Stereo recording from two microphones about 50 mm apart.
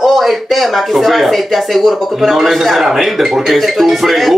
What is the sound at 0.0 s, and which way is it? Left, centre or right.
Speech, centre.